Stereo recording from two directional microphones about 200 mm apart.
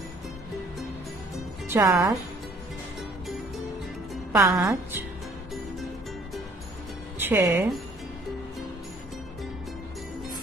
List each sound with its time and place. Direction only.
1.7 s a woman's voice: 15° right (ahead or behind)
3.0 s music: centre (ahead or behind)
4.1 s a woman's voice: centre (ahead or behind)
7.2 s speech: 10° right (ahead or behind)